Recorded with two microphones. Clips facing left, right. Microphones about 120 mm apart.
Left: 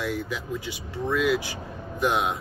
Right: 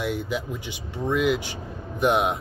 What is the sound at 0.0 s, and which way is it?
Speech, 20° right (ahead or behind).